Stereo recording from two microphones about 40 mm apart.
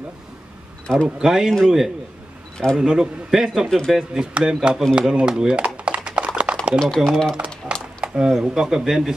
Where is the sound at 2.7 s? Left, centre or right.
Right.